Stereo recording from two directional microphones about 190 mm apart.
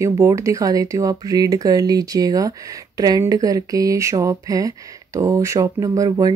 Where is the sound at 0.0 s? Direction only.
15° right (ahead or behind).